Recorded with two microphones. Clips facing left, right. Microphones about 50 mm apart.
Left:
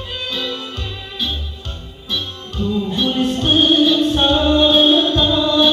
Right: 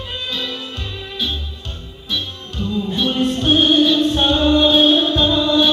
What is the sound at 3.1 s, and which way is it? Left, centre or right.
Music, centre.